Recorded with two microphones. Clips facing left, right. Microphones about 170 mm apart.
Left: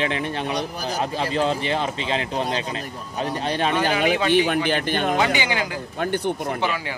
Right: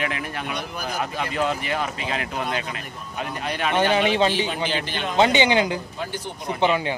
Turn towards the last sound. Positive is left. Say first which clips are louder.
# right 4 dB
turn(degrees=-20)  # may be behind; listen again after turning